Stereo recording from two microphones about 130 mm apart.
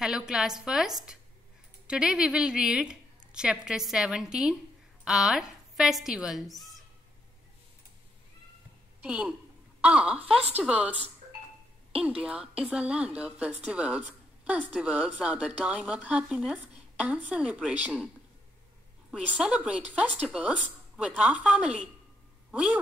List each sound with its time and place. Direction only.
0.0 s a woman's voice: 5° right (ahead or behind)
9.0 s a woman's voice: 10° right (ahead or behind)
10.3 s speech: 50° right (ahead or behind)
10.6 s a woman's voice: 10° right (ahead or behind)
12.5 s a woman's voice: 10° right (ahead or behind)
19.0 s a woman's voice: 5° right (ahead or behind)